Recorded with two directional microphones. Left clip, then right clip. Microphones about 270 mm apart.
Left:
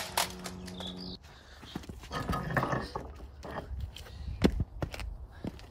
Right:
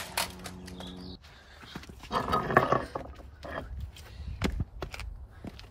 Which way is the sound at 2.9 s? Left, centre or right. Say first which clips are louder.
Right 2 dB; left.